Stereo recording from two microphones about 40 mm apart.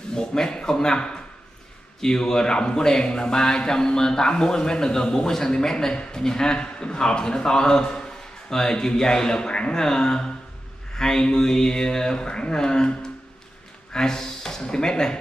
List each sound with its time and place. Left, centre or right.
0.1 s a man's voice: centre